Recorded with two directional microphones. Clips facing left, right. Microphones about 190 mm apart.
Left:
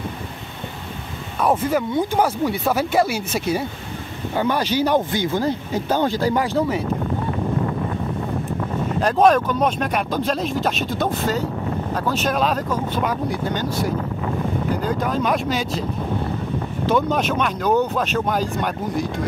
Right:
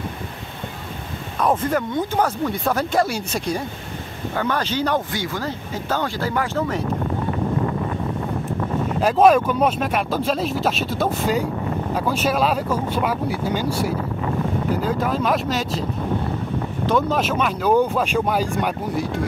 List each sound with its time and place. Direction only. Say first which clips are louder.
1.4 s speech: left 1 dB; 10° left (ahead or behind)
9.0 s speech: right 1 dB; 5° right (ahead or behind)
16.8 s speech: left 1 dB; centre (ahead or behind)